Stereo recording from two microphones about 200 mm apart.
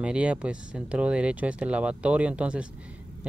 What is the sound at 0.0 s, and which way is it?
Speech, 5° right (ahead or behind).